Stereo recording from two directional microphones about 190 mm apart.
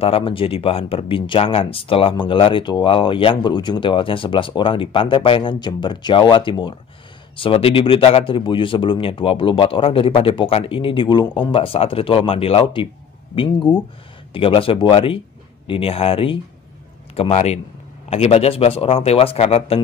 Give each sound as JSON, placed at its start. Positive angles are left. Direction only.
{"t": 0.0, "sound": "speech", "side_deg": 30}